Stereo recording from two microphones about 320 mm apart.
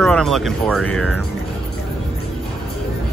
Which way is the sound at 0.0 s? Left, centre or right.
Centre.